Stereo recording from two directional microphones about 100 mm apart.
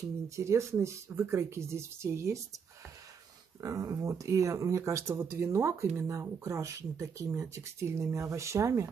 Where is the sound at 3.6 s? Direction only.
35° right (ahead or behind).